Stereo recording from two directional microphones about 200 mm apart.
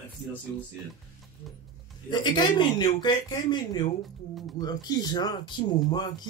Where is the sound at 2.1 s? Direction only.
25° left (ahead or behind).